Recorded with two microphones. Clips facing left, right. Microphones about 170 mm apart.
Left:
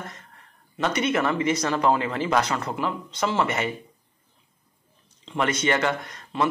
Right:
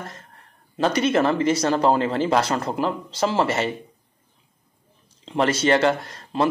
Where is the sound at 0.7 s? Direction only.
35° right (ahead or behind).